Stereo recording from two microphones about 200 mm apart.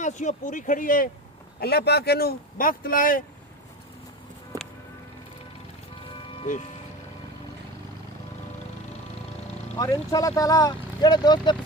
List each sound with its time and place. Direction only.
0.0 s speech: 35° left (ahead or behind)
4.5 s music: 15° right (ahead or behind)
9.8 s speech: 20° left (ahead or behind)